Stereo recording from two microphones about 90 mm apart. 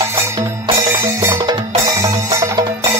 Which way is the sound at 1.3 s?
55° right (ahead or behind).